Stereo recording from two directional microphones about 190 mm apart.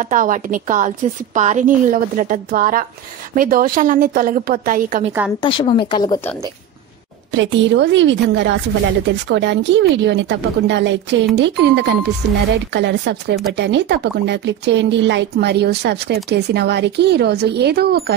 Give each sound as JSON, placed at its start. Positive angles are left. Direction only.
{"t": 0.0, "sound": "a woman's voice", "side_deg": -45}
{"t": 5.4, "sound": "speech", "side_deg": 25}
{"t": 7.3, "sound": "a woman's voice", "side_deg": -70}